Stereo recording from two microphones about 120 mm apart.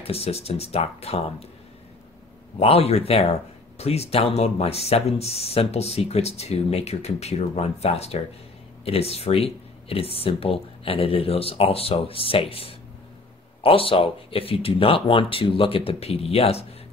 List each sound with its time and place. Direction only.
0.0 s speech: 55° left (ahead or behind)
2.6 s speech: 55° left (ahead or behind)